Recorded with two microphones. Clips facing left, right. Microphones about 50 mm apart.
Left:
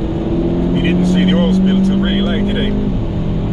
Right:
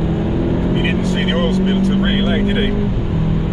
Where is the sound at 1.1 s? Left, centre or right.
Centre.